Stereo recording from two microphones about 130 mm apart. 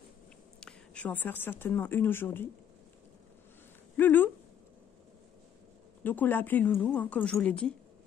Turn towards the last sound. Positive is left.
turn(degrees=10)  # may be behind; listen again after turning